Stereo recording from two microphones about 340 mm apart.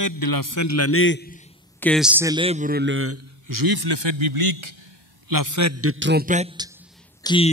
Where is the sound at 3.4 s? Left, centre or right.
Right.